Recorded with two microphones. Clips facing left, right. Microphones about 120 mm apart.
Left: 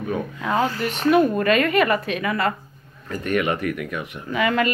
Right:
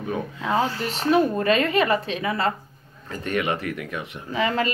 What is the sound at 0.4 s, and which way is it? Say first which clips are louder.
Speech: left 1 dB; 30° right (ahead or behind).